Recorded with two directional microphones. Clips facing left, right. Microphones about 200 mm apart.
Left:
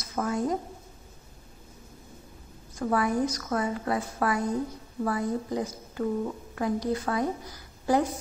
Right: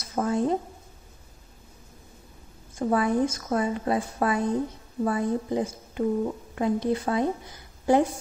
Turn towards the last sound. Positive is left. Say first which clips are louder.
# right 3 dB
turn(degrees=-25)  # may be behind; listen again after turning